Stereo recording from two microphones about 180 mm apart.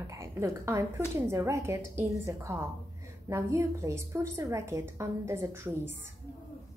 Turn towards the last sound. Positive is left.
turn(degrees=-15)  # may be behind; listen again after turning